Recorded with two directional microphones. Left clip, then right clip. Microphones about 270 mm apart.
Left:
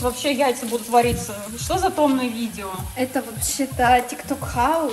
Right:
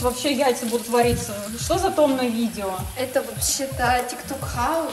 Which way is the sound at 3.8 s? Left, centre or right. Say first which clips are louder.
Left 6 dB; left.